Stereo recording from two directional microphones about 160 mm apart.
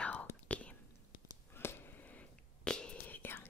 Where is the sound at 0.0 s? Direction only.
10° left (ahead or behind).